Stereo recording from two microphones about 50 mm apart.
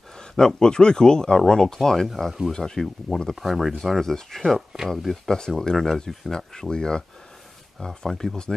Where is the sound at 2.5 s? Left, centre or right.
Centre.